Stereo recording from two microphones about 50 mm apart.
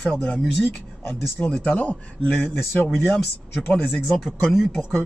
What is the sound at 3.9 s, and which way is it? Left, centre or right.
Speech, centre.